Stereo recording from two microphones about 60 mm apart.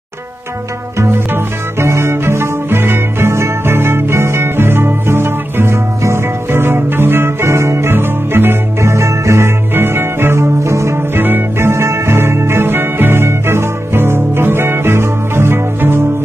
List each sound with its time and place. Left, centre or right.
0.9 s music: right
8.9 s music: right
9.8 s music: right
10.6 s music: right
11.1 s music: right